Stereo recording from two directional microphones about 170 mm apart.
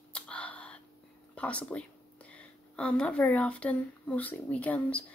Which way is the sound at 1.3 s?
5° left (ahead or behind).